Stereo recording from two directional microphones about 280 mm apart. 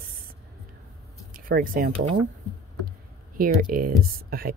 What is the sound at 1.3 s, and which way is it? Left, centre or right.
Speech, right.